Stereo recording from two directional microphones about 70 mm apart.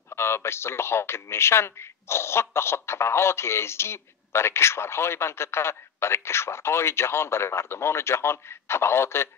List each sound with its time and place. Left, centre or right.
0.1 s a man's voice: left